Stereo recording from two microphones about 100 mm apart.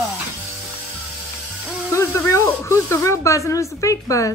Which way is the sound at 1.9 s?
30° left (ahead or behind).